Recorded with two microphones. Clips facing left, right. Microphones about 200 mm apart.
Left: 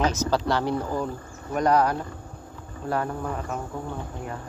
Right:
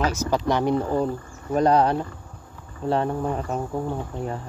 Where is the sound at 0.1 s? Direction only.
15° right (ahead or behind); by 3.6 s 30° right (ahead or behind).